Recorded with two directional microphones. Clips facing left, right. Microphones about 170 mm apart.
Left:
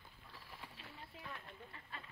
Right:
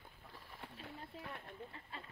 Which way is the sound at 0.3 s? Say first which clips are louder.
Right 2 dB; 45° right (ahead or behind).